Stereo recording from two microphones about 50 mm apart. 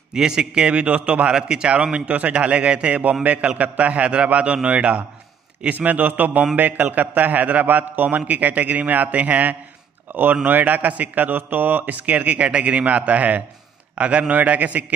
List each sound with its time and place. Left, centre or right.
0.1 s a man's voice: centre
5.7 s a man's voice: right